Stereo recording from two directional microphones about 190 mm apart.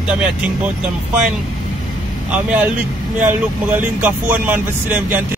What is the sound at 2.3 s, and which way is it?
Speech, 5° right (ahead or behind).